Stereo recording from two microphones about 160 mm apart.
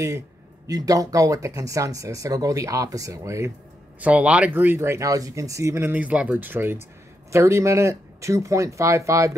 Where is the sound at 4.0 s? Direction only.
10° right (ahead or behind).